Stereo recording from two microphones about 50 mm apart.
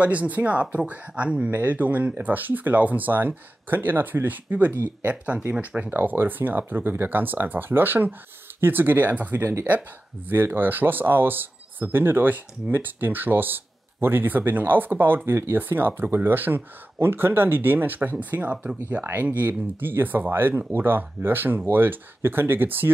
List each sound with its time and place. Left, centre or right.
0.0 s speech: right
1.5 s speech: right
5.9 s speech: right
9.4 s speech: right
9.7 s speech: right
19.2 s speech: right